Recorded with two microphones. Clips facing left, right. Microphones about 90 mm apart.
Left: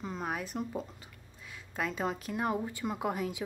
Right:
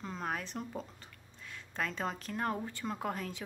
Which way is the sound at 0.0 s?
5° left (ahead or behind).